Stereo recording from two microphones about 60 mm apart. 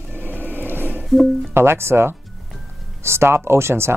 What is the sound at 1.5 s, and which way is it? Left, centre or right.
Speech, right.